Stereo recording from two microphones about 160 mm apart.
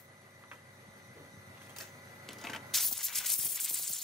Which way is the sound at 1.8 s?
Centre (ahead or behind).